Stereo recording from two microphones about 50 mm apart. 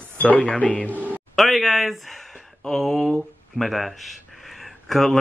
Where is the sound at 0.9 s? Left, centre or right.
Right.